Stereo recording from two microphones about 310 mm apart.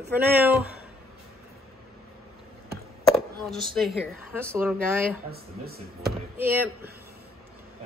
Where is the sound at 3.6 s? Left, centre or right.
Centre.